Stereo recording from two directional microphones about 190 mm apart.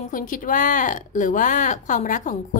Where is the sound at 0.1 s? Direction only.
45° left (ahead or behind).